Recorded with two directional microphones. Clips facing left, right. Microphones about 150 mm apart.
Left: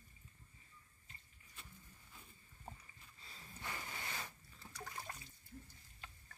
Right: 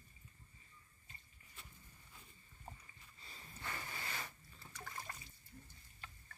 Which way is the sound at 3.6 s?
15° left (ahead or behind).